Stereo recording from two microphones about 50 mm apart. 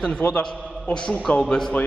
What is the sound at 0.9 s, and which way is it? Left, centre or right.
Speech, centre.